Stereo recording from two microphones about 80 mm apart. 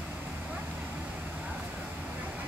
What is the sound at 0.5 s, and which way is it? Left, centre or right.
Vehicle, centre.